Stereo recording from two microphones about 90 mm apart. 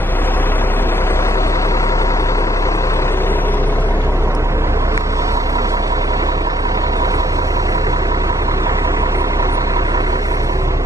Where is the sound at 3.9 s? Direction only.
35° right (ahead or behind).